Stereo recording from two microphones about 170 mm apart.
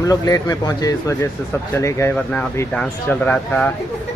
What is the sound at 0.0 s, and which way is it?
Speech, 20° left (ahead or behind).